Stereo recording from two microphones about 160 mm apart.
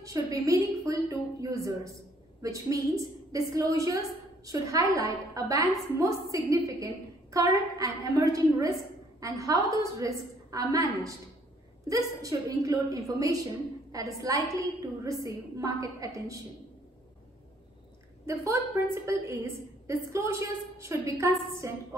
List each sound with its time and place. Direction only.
0.0 s a woman's voice: 20° right (ahead or behind)
18.2 s a woman's voice: 20° right (ahead or behind)